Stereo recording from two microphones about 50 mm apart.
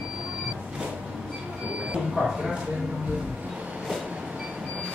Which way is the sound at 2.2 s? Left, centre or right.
Right.